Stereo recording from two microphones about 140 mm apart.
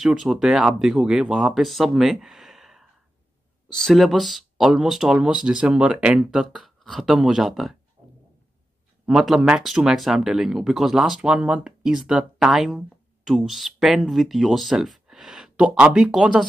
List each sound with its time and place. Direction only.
0.0 s speech: 5° right (ahead or behind)
9.0 s speech: 5° right (ahead or behind)